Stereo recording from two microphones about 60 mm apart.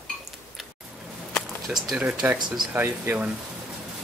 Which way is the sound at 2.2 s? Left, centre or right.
Right.